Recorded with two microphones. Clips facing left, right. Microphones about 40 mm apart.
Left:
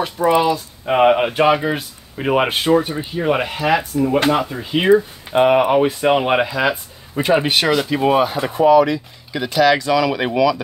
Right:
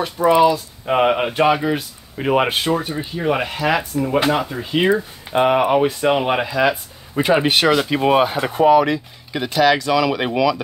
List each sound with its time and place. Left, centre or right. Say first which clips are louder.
0.2 s speech: right 2 dB; centre
7.2 s speech: even; centre
9.5 s speech: left 1 dB; centre